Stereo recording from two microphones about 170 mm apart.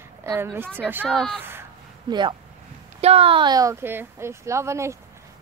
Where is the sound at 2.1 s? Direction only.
25° right (ahead or behind).